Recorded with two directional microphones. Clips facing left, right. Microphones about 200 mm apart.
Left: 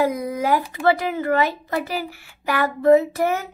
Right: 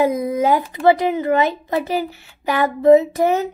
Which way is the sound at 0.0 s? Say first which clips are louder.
Right 4 dB; 25° right (ahead or behind).